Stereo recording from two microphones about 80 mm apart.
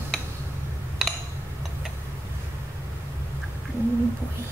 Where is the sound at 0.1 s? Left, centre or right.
Centre.